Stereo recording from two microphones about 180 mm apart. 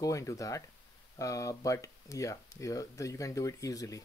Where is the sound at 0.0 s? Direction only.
15° left (ahead or behind).